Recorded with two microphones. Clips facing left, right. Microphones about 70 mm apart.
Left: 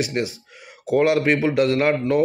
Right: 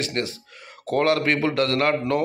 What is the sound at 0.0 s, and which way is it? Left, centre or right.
A man's voice, centre.